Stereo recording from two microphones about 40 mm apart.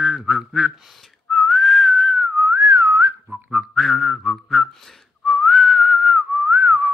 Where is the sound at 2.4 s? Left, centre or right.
Right.